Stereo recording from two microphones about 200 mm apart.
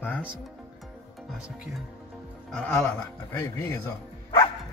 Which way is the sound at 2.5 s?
5° left (ahead or behind).